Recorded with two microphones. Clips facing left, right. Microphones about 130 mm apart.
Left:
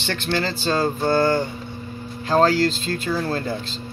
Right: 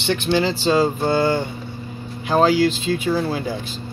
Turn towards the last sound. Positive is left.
turn(degrees=-10)  # may be behind; listen again after turning